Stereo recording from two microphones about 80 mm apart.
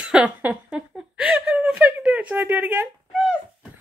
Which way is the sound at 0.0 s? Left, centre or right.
Centre.